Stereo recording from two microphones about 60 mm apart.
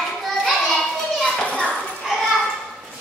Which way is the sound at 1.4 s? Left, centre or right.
Centre.